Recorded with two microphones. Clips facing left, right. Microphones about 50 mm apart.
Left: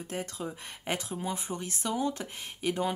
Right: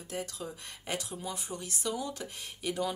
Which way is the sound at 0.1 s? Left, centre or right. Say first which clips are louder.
Left 1 dB; left.